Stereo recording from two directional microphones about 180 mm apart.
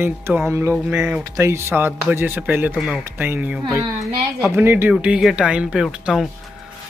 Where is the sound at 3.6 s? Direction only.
20° right (ahead or behind); by 6.2 s 5° right (ahead or behind).